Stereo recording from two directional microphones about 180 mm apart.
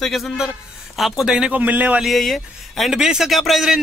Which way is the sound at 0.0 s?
Centre (ahead or behind).